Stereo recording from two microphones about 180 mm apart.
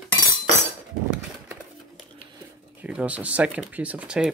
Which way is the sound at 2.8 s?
5° right (ahead or behind).